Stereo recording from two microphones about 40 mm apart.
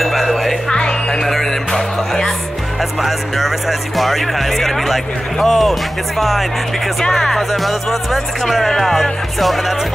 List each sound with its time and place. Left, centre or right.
0.0 s music: centre
0.7 s music: centre
1.2 s music: centre
2.8 s speech: centre